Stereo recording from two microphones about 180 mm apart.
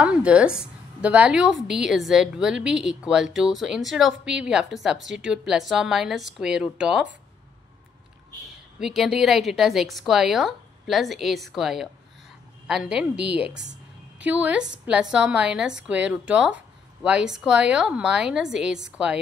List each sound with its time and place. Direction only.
0.0 s a woman's voice: 5° right (ahead or behind)
8.7 s a woman's voice: centre (ahead or behind)
13.6 s a sound: 75° right (ahead or behind)
14.2 s a woman's voice: 5° right (ahead or behind)